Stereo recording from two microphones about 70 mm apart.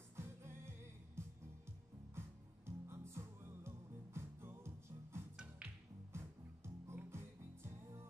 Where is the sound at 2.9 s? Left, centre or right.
Right.